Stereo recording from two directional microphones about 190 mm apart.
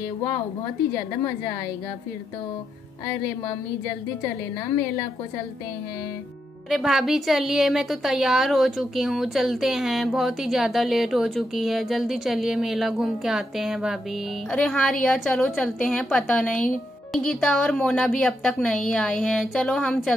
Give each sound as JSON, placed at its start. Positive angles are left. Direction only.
{"t": 6.7, "sound": "a woman's voice", "side_deg": 0}